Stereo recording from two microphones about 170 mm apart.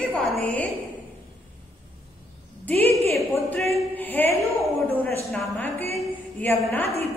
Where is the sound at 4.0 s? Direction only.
10° left (ahead or behind).